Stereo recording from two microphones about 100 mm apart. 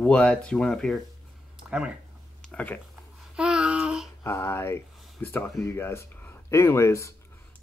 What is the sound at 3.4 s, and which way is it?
Child singing, 10° right (ahead or behind).